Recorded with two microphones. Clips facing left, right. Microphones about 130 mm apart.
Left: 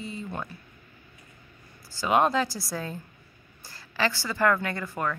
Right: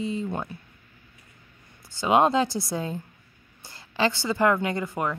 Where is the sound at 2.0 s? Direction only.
25° right (ahead or behind).